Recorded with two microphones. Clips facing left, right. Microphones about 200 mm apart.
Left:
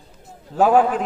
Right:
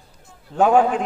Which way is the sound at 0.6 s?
5° left (ahead or behind).